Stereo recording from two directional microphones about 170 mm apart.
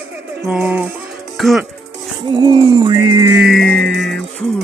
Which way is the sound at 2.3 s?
25° right (ahead or behind).